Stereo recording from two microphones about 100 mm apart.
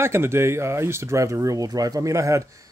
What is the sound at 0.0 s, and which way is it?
Speech, 25° right (ahead or behind).